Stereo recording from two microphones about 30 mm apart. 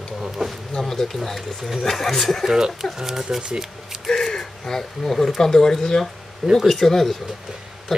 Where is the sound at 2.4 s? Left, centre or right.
Centre.